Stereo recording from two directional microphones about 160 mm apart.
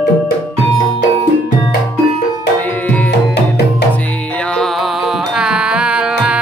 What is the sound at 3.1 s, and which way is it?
Tabla, 90° left.